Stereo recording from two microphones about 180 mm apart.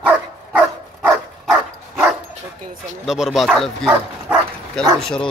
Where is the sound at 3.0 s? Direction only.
Centre (ahead or behind).